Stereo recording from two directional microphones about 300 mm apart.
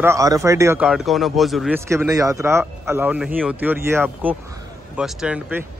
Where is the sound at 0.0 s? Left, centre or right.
Centre.